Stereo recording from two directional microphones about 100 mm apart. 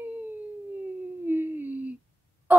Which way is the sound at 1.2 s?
20° right (ahead or behind).